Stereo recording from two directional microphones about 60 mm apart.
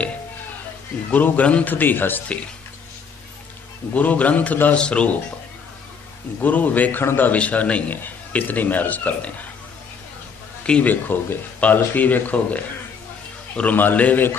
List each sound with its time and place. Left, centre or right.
1.1 s a man's voice: left
3.9 s speech: left
6.4 s speech: left
7.3 s speech: left
10.6 s speech: left
13.7 s a man's voice: left